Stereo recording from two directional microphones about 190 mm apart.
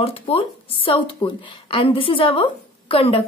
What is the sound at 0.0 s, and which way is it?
A woman's voice, 30° left (ahead or behind).